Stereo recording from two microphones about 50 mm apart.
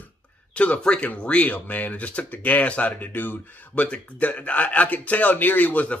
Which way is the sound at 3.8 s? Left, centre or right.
Left.